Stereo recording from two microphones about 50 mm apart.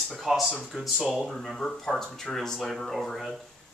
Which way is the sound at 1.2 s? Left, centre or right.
Centre.